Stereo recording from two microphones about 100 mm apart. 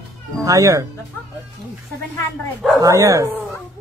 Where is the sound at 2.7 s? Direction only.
35° right (ahead or behind).